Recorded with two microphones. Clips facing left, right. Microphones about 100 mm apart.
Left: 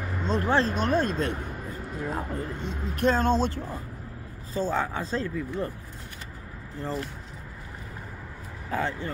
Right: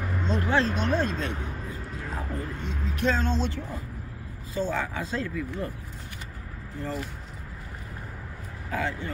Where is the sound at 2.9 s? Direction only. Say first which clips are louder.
Left 4 dB; 50° left (ahead or behind).